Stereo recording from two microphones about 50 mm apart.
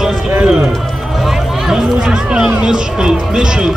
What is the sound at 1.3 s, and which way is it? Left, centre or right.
Music, centre.